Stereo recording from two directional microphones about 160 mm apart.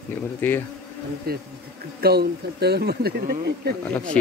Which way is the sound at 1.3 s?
75° right (ahead or behind).